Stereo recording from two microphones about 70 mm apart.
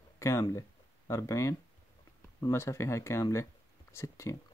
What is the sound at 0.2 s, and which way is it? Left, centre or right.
Speech, left.